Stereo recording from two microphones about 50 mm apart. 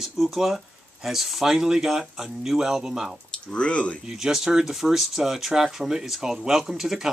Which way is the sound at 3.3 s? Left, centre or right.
Centre.